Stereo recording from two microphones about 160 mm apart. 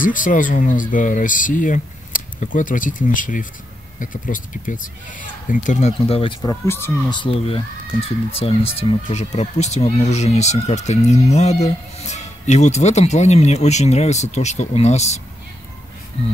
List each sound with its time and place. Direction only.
0.0 s speech: 55° left (ahead or behind); by 6.3 s 40° left (ahead or behind)
6.4 s speech: 15° left (ahead or behind)
7.1 s speech: 35° left (ahead or behind)